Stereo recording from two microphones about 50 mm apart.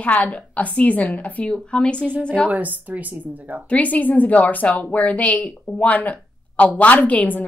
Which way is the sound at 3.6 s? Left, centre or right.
Left.